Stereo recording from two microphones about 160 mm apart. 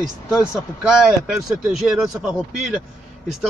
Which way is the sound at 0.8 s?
5° right (ahead or behind).